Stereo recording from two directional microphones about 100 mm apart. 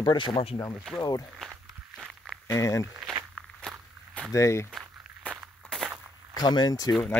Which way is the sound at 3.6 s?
5° left (ahead or behind).